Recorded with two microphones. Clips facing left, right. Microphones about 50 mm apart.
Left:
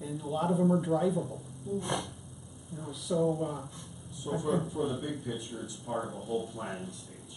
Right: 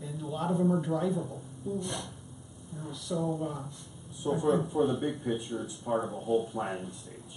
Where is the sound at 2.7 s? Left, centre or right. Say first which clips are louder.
Left 3 dB; centre.